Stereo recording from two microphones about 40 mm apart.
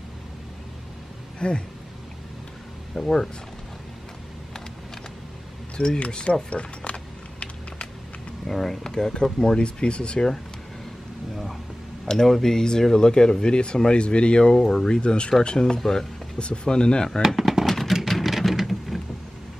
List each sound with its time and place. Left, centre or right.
1.4 s speech: left
2.9 s speech: centre
5.8 s speech: left
6.5 s a sound: left
8.5 s speech: centre
8.8 s speech: centre
12.1 s speech: centre
14.9 s speech: left
15.6 s speech: centre
16.3 s speech: left
17.4 s a sound: centre
17.6 s a sound: centre